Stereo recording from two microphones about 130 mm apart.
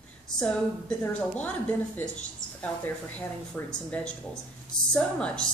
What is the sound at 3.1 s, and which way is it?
A woman's voice, 10° left (ahead or behind).